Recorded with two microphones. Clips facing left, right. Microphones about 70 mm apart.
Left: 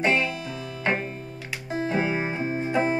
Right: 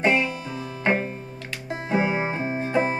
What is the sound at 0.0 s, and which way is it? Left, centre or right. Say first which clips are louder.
Music: right 2 dB; centre.